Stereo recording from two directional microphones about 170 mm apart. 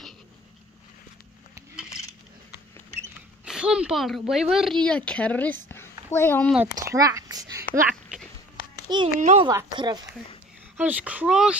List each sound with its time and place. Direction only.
3.4 s speech: 5° right (ahead or behind)
5.7 s a sound: 15° left (ahead or behind)
6.7 s speech: 20° right (ahead or behind)
7.9 s a sound: centre (ahead or behind)
8.8 s a child's voice: 25° right (ahead or behind)
10.8 s speech: 10° right (ahead or behind)